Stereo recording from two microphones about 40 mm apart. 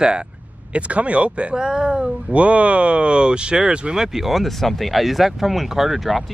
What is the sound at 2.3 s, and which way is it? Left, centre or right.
Speech, right.